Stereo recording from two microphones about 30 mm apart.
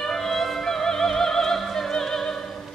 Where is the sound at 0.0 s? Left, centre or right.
Centre.